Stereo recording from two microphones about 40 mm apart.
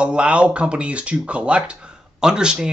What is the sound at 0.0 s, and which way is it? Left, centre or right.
Speech, right.